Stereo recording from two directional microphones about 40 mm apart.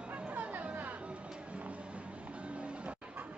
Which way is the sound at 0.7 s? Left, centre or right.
Right.